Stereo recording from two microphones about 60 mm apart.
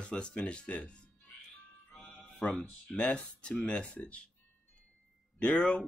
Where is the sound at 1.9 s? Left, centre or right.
Centre.